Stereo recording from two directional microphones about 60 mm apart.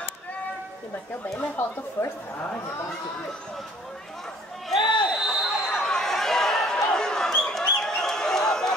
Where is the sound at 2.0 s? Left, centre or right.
Left.